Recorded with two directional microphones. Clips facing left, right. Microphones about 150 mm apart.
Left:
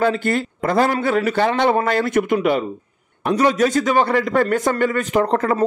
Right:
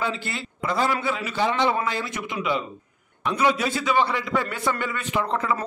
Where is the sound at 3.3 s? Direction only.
45° left (ahead or behind).